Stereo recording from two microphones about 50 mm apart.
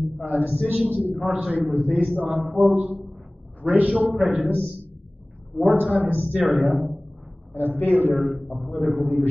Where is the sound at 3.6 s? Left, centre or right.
Right.